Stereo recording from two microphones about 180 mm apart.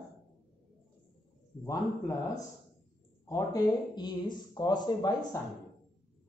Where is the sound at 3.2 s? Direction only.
20° left (ahead or behind).